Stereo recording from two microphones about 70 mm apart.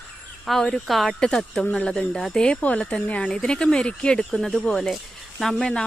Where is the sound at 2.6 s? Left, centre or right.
Left.